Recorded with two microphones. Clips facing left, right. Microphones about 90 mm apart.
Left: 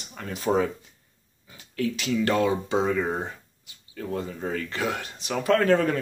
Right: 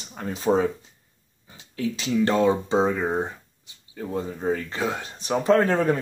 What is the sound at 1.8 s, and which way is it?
Speech, 30° right (ahead or behind).